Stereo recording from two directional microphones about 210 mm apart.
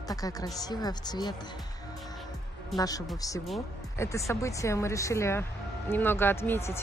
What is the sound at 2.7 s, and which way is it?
Speech, 15° left (ahead or behind).